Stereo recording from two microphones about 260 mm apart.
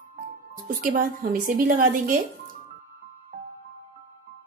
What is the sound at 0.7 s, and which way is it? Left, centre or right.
Speech, right.